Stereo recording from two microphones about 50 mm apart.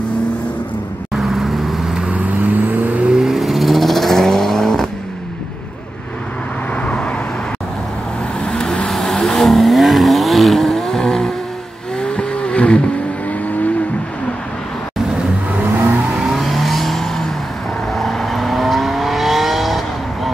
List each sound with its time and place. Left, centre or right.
1.1 s vehicle: centre
2.0 s vehicle: right
3.2 s vehicle: centre
6.8 s vehicle: left
8.4 s vehicle: centre
8.9 s vehicle: centre; by 12.8 s left
16.2 s vehicle: centre